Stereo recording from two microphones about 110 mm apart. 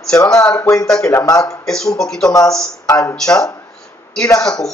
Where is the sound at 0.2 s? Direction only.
30° left (ahead or behind).